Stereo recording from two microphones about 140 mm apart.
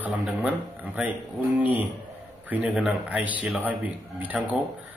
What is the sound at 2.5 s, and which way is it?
A man's voice, 10° right (ahead or behind).